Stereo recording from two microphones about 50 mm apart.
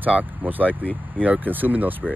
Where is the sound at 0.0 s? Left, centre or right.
Right.